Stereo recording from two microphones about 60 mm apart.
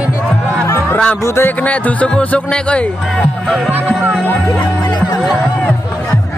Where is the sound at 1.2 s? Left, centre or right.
Left.